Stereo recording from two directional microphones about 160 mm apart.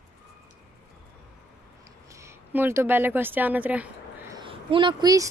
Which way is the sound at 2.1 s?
15° right (ahead or behind).